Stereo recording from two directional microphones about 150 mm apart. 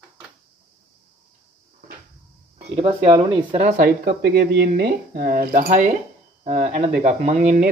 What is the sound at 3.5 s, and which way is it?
Speech, 55° right (ahead or behind).